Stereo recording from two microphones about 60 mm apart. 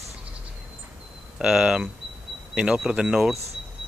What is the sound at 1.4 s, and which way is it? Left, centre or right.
Speech, centre.